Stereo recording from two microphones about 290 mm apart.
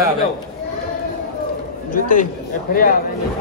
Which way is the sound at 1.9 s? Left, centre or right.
Left.